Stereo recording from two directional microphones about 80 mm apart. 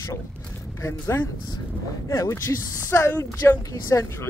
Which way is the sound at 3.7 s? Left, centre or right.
Left.